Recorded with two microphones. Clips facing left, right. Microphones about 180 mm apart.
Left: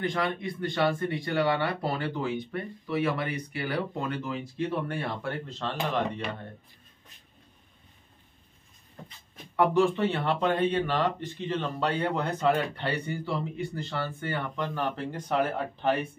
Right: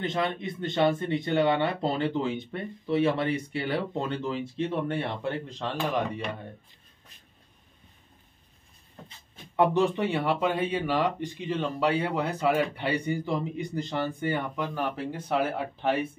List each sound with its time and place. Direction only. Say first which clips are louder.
0.0 s speech: even; 25° right (ahead or behind)
9.6 s speech: even; 20° right (ahead or behind)